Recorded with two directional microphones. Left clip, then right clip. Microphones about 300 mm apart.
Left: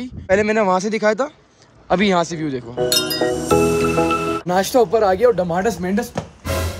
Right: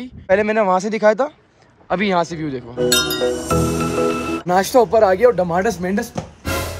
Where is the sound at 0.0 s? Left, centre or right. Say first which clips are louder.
Right 1 dB; centre.